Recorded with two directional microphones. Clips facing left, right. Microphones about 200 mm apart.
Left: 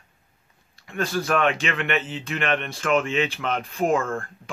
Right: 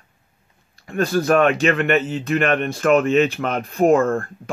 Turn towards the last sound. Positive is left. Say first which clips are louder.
# right 7 dB
turn(degrees=-40)  # may be behind; listen again after turning